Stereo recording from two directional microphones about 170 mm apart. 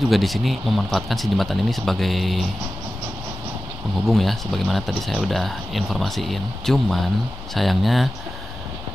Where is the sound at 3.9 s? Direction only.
Centre (ahead or behind).